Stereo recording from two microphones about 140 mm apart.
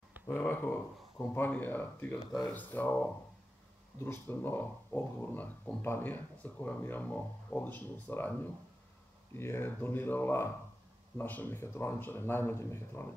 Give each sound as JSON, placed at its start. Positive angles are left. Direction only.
{"t": 0.3, "sound": "speech", "side_deg": 15}